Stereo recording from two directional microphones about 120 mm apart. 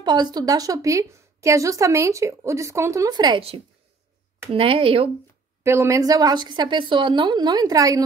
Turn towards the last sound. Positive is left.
turn(degrees=-30)  # may be behind; listen again after turning